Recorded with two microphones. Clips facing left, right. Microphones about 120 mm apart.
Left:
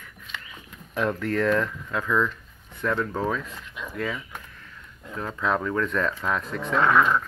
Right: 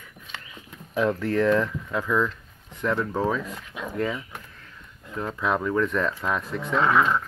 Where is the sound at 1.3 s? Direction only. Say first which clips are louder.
Right 1 dB; 15° right (ahead or behind).